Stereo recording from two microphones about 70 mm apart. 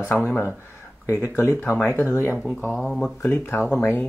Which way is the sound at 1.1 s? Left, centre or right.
Left.